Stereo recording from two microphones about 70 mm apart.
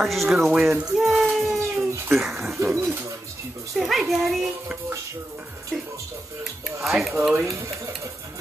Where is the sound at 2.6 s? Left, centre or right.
Right.